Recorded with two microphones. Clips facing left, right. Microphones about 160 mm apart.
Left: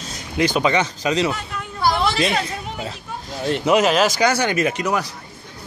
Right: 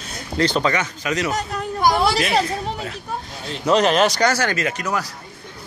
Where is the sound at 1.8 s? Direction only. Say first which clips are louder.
Right 2 dB; 10° right (ahead or behind).